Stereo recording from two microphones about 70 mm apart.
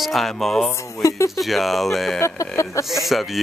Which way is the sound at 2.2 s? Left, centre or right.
Left.